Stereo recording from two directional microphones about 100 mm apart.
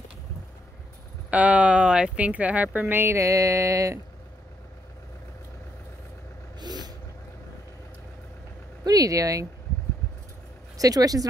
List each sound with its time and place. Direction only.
1.3 s speech: 15° right (ahead or behind); by 4.0 s 30° right (ahead or behind)
6.6 s vehicle: 45° right (ahead or behind)
8.8 s speech: 35° right (ahead or behind)
10.8 s speech: 35° right (ahead or behind)